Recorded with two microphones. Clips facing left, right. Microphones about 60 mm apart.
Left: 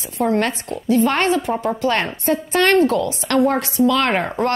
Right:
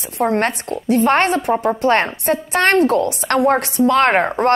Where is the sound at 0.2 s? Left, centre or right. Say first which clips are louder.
Right 1 dB; right.